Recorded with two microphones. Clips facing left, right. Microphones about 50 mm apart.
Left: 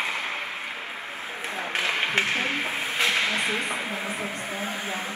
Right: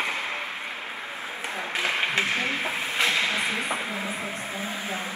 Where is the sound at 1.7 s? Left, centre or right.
Left.